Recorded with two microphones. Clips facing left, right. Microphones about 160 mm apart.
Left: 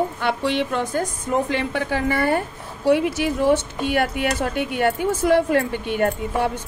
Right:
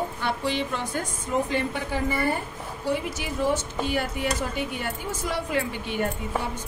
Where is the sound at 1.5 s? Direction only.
80° left.